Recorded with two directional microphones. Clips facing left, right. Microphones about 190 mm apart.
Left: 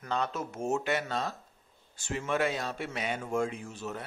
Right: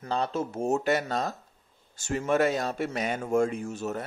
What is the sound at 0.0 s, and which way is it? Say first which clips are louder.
Speech: right 4 dB; 30° right (ahead or behind).